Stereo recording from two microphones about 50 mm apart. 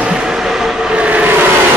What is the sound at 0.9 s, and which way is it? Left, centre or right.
Vehicle, right.